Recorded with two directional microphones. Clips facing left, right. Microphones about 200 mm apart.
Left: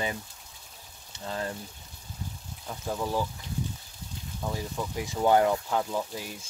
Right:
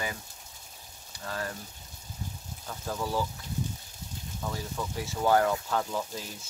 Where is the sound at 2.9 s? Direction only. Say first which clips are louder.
Left 1 dB; 15° left (ahead or behind).